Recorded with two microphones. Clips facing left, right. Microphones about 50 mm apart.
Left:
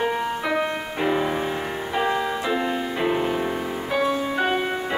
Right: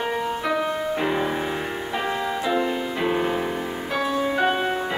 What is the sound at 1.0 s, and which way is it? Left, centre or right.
Music, centre.